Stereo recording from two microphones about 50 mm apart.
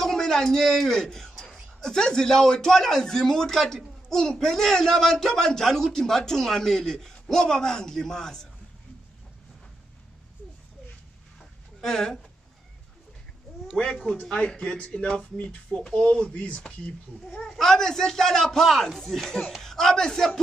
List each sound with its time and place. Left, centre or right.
0.0 s speech: centre
11.8 s speech: centre
14.3 s speech: centre
17.3 s speech: centre